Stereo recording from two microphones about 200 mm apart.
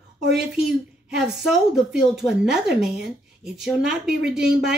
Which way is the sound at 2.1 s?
5° right (ahead or behind).